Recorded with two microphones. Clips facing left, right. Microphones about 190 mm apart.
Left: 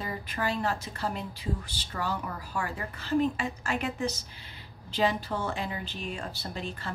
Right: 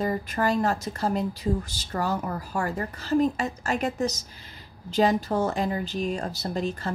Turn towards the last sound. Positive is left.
turn(degrees=-40)  # may be behind; listen again after turning